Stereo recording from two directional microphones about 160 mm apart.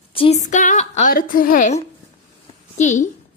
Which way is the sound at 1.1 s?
60° left (ahead or behind).